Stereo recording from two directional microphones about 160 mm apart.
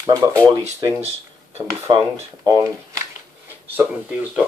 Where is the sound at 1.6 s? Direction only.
25° right (ahead or behind).